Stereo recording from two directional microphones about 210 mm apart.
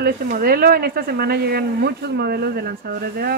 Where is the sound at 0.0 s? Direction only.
45° right (ahead or behind).